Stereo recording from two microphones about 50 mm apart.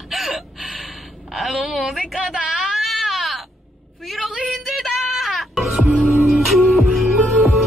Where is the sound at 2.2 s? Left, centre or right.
Centre.